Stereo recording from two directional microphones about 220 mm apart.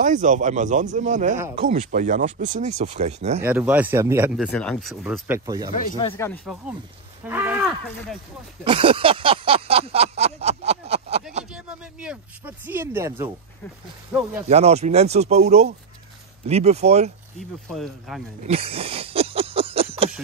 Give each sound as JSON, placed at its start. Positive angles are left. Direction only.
{"t": 0.0, "sound": "speech", "side_deg": -35}
{"t": 3.3, "sound": "speech", "side_deg": -5}
{"t": 4.5, "sound": "speech", "side_deg": 5}
{"t": 5.2, "sound": "speech", "side_deg": -15}
{"t": 6.1, "sound": "speech", "side_deg": 10}
{"t": 6.4, "sound": "speech", "side_deg": -5}
{"t": 8.6, "sound": "a sound", "side_deg": -25}
{"t": 11.5, "sound": "speech", "side_deg": -5}
{"t": 14.5, "sound": "speech", "side_deg": -30}
{"t": 17.6, "sound": "speech", "side_deg": 0}
{"t": 18.4, "sound": "a sound", "side_deg": -25}